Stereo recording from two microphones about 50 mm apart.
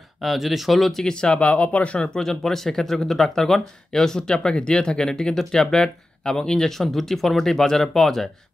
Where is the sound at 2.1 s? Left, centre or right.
Centre.